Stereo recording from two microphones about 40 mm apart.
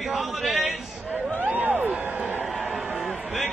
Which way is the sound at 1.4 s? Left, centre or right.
Right.